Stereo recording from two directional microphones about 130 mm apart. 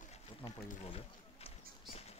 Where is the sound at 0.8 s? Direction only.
50° left (ahead or behind).